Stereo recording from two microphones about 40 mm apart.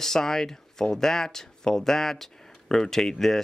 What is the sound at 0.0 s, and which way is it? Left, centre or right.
Speech, centre.